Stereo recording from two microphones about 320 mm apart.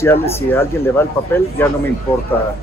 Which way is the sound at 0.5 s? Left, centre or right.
Centre.